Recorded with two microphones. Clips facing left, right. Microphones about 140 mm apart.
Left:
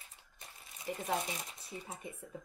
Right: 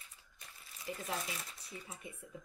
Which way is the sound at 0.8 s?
25° left (ahead or behind).